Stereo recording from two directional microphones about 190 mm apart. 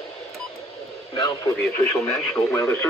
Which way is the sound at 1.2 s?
15° left (ahead or behind).